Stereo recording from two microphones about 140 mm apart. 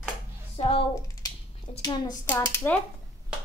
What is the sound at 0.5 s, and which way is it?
Speech, 45° left (ahead or behind).